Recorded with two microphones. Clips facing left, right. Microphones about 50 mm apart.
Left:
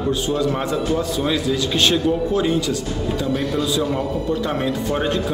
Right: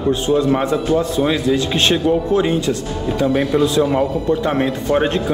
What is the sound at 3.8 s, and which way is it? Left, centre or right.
A man's voice, right.